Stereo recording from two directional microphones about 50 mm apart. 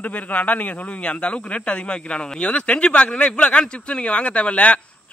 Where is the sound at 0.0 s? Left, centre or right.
Left.